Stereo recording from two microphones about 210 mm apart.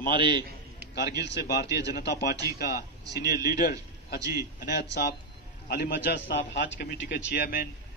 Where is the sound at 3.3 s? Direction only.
45° left (ahead or behind).